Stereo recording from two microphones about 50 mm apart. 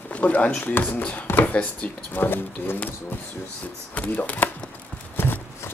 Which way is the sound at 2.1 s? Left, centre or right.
Left.